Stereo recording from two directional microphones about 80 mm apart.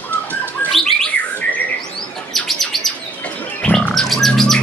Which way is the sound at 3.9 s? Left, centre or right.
Centre.